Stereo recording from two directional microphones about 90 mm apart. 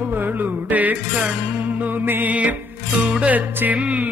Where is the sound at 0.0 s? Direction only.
20° right (ahead or behind).